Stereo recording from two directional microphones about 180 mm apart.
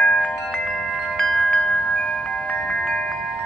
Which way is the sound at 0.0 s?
5° left (ahead or behind).